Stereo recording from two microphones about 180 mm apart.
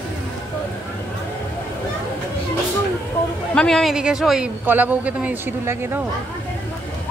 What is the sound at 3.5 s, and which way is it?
Speech, 5° left (ahead or behind).